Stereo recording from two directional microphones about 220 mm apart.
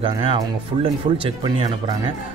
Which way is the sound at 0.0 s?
25° right (ahead or behind).